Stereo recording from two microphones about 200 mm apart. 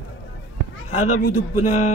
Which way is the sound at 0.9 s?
35° left (ahead or behind).